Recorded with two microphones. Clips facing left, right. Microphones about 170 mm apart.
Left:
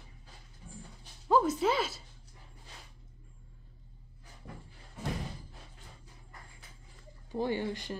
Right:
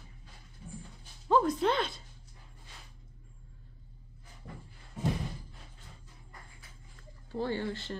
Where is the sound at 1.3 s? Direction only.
5° left (ahead or behind).